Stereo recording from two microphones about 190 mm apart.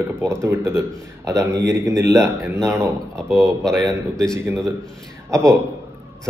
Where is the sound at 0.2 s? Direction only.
15° right (ahead or behind).